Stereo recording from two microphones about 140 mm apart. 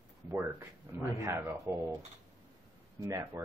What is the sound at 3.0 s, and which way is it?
Speech, 25° right (ahead or behind).